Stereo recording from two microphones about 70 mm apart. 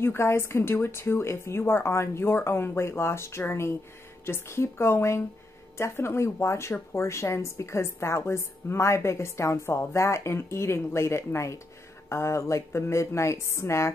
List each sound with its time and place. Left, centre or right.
0.0 s a woman's voice: left